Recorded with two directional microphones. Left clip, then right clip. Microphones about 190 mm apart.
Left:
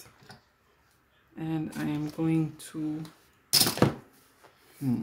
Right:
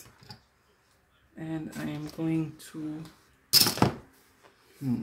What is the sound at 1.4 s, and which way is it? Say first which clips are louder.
Speech: left 3 dB; 20° left (ahead or behind).